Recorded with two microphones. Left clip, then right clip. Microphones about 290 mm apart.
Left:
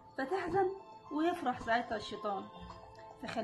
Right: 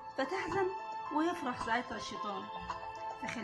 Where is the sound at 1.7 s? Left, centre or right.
Centre.